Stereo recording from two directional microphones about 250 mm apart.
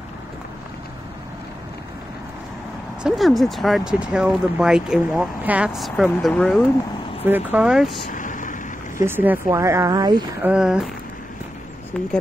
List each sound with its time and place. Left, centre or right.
3.0 s speech: centre
8.1 s a sound: left
8.9 s speech: centre
10.5 s speech: centre